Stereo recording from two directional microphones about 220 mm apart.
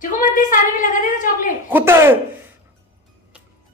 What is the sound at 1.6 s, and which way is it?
Speech, 10° right (ahead or behind).